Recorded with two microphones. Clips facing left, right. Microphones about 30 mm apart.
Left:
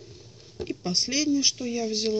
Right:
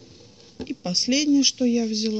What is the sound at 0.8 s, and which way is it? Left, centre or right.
Speech, right.